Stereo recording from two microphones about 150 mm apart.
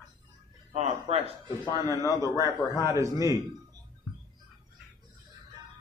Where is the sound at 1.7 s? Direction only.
20° right (ahead or behind).